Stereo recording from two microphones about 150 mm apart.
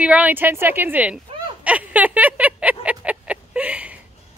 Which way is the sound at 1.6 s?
10° right (ahead or behind).